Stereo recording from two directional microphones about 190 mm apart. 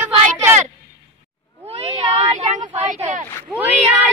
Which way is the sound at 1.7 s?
30° right (ahead or behind).